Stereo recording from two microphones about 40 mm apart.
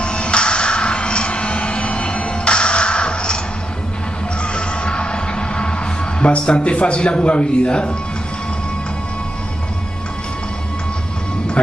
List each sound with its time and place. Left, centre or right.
0.0 s music: left
4.4 s music: left
11.6 s speech: left